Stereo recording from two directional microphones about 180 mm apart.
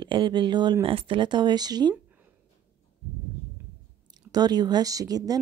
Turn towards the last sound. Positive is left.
turn(degrees=-20)  # may be behind; listen again after turning